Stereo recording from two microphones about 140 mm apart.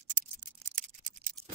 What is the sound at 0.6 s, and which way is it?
Scissors, 65° right (ahead or behind).